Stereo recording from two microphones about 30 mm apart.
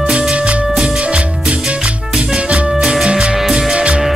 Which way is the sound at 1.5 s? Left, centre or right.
Right.